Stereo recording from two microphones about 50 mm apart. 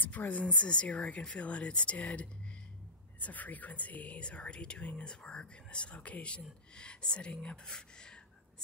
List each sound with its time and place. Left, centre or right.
0.0 s speech: left; by 8.2 s centre